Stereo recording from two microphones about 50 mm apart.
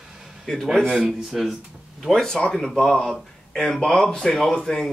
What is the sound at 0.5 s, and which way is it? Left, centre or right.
Speech, centre.